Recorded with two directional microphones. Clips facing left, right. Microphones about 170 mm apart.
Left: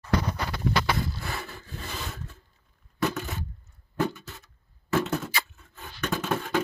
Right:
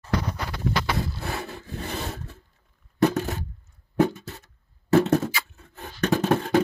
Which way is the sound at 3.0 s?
40° right (ahead or behind).